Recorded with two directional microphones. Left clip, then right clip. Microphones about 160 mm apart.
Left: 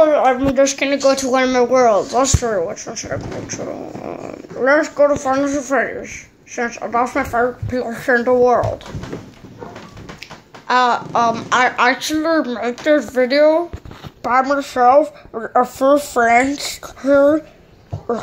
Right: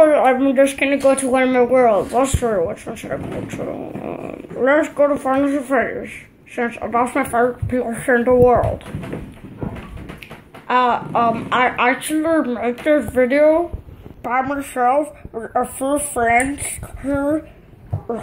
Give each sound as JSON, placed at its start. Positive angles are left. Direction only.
{"t": 0.0, "sound": "speech", "side_deg": 0}
{"t": 10.7, "sound": "speech", "side_deg": 10}
{"t": 14.2, "sound": "speech", "side_deg": 20}